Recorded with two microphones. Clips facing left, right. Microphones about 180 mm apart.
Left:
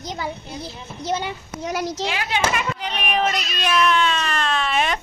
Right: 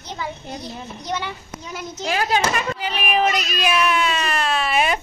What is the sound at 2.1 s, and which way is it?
Speech, 40° right (ahead or behind).